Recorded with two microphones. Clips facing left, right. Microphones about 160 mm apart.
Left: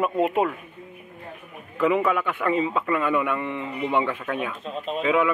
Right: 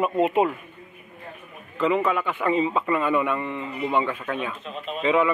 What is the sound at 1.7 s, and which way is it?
A man's voice, 10° left (ahead or behind).